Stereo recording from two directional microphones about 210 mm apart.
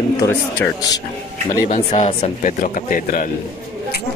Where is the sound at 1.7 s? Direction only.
35° left (ahead or behind).